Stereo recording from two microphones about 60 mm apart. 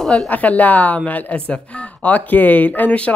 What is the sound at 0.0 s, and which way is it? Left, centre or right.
Speech, centre.